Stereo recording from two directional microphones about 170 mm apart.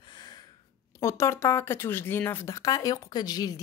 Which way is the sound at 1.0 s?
15° left (ahead or behind).